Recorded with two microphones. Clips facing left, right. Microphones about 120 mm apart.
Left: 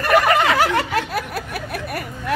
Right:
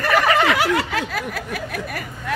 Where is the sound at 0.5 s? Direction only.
45° left (ahead or behind).